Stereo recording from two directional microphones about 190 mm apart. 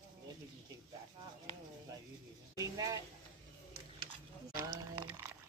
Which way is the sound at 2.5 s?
20° right (ahead or behind).